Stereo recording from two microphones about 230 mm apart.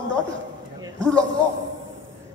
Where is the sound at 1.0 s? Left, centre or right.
Centre.